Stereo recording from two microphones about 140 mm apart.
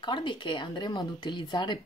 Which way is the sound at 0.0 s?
35° left (ahead or behind).